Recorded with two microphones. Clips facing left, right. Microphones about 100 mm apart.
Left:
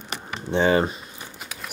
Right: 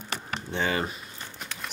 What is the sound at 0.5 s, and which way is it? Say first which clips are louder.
Speech: left 9 dB; 25° left (ahead or behind).